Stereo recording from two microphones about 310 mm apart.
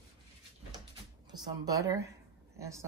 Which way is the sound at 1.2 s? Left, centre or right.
Centre.